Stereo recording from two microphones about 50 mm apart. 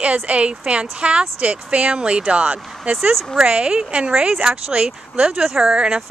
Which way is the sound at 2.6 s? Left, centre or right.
Centre.